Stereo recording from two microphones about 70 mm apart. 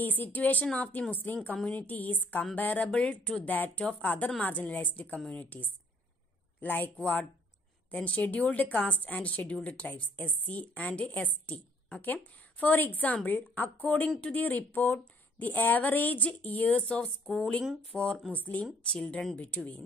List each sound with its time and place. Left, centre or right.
0.0 s a woman's voice: left; by 18.3 s centre
18.3 s a woman's voice: left